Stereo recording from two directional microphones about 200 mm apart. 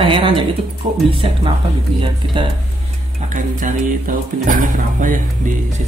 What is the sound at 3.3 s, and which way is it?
Speech, 40° right (ahead or behind).